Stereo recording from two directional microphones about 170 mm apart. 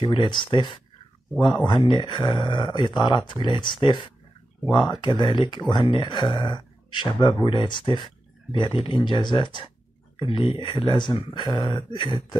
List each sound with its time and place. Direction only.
0.0 s speech: 30° left (ahead or behind)